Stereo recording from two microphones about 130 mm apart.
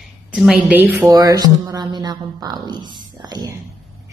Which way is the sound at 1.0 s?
30° right (ahead or behind).